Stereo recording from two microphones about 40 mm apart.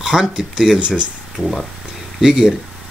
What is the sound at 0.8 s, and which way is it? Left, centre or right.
Speech, right.